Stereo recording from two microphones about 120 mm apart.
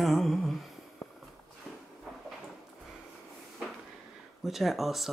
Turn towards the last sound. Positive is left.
turn(degrees=0)  # may be behind; listen again after turning